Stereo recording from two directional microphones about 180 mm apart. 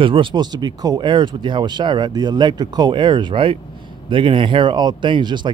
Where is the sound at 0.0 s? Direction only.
25° right (ahead or behind).